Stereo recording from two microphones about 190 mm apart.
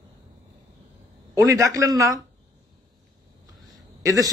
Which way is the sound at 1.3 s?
20° right (ahead or behind).